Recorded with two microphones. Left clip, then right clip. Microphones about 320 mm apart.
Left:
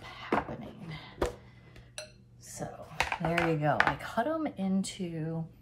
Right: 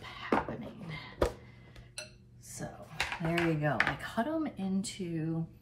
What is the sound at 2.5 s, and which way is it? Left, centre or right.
Speech, centre.